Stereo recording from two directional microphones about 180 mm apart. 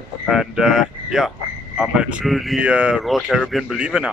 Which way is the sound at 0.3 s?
Centre (ahead or behind).